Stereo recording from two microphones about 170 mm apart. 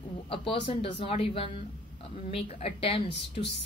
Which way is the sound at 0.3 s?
30° left (ahead or behind).